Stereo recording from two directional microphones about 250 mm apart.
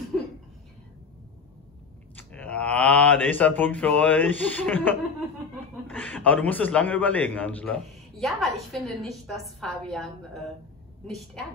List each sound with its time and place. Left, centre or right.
2.1 s a man's voice: centre